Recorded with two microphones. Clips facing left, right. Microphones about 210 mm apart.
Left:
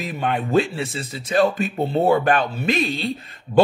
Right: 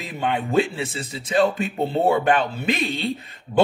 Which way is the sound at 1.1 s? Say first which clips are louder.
Left 1 dB; 20° right (ahead or behind).